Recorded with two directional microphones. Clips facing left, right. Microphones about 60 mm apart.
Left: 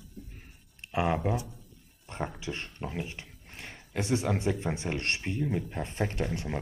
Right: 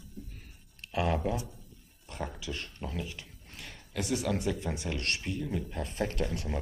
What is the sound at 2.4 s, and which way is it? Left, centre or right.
Speech, left.